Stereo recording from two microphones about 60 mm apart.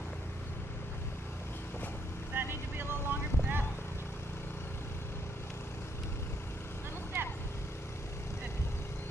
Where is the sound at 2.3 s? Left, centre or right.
Right.